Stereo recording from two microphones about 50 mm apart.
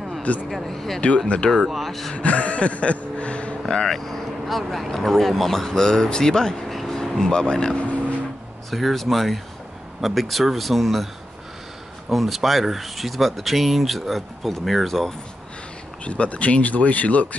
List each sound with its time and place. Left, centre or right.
0.5 s speech: centre
1.0 s speech: left
1.5 s speech: centre
2.1 s vehicle: left
3.6 s speech: centre
6.7 s vehicle: centre
7.2 s speech: centre
8.6 s speech: centre
12.1 s speech: centre
16.0 s speech: left